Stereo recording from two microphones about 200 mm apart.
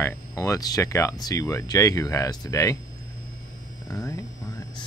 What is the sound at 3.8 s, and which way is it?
Speech, 15° left (ahead or behind).